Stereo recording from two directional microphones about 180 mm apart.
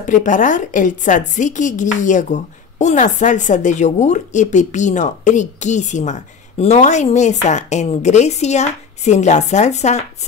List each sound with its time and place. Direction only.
0.0 s a woman's voice: 45° left (ahead or behind)